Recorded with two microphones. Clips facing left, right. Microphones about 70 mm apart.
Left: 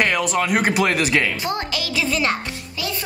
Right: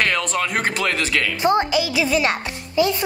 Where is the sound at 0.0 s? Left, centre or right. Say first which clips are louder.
Left 1 dB; centre.